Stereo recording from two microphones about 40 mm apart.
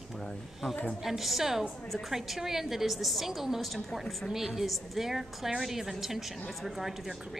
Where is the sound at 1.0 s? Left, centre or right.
Centre.